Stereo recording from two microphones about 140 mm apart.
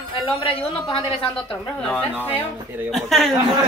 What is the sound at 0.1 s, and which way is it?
Speech, 40° left (ahead or behind).